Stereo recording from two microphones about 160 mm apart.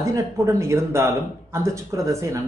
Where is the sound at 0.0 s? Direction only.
20° right (ahead or behind).